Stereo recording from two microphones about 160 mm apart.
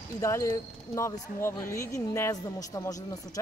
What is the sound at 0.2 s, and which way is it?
Speech, 20° left (ahead or behind).